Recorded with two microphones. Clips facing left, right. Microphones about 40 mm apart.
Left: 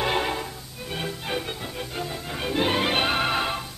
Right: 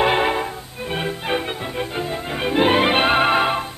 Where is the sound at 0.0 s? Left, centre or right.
Right.